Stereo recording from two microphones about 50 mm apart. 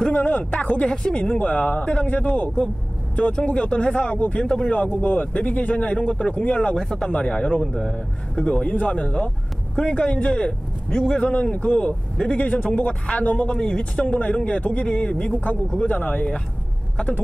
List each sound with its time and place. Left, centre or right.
0.1 s speech: left
0.5 s speech: left
1.0 s speech: centre
1.4 s speech: left; by 4.7 s centre
4.7 s speech: left
6.8 s speech: centre
7.1 s speech: left
13.6 s speech: centre
14.0 s speech: left
14.3 s speech: centre
16.0 s speech: left